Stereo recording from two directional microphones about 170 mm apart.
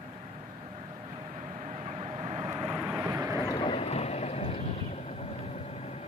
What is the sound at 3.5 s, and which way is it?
Vehicle, 30° left (ahead or behind).